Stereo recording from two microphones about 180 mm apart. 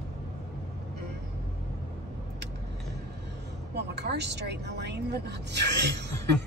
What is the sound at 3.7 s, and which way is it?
Speech, 70° right (ahead or behind).